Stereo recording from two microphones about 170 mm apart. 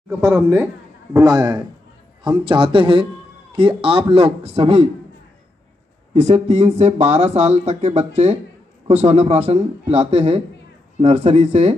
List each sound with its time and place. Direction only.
0.2 s a man's voice: 15° right (ahead or behind); by 4.8 s 35° right (ahead or behind)
6.1 s speech: 40° right (ahead or behind)